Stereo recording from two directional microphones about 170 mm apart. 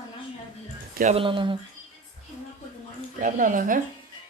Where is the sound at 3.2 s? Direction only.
50° right (ahead or behind).